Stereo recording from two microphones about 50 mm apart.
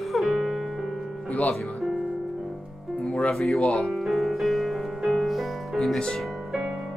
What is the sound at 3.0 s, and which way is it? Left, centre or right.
Music, left.